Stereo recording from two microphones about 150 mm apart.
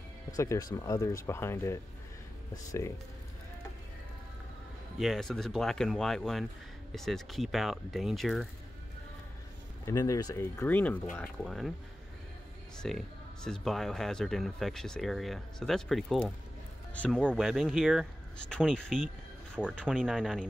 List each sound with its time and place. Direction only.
0.3 s speech: 20° left (ahead or behind)
4.9 s speech: centre (ahead or behind)
9.8 s speech: 20° left (ahead or behind); by 11.7 s centre (ahead or behind)
12.8 s speech: 5° left (ahead or behind)